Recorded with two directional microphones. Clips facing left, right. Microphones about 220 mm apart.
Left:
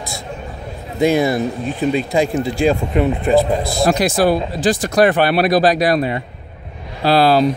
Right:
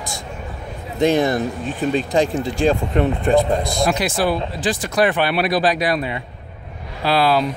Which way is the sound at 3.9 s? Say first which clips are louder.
Left 8 dB; 40° left (ahead or behind).